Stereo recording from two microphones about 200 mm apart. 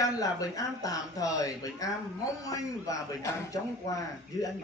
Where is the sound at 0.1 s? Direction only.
15° left (ahead or behind).